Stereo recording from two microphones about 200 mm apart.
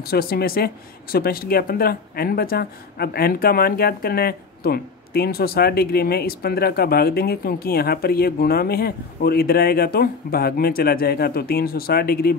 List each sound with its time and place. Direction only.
0.0 s speech: 50° left (ahead or behind)